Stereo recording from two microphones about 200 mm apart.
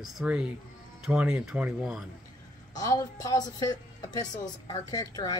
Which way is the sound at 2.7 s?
20° left (ahead or behind).